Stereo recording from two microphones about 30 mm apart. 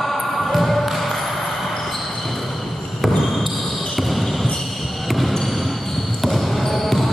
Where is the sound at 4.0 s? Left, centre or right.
Centre.